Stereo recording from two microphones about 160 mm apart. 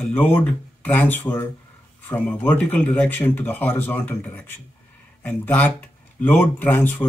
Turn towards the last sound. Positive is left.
turn(degrees=10)  # may be behind; listen again after turning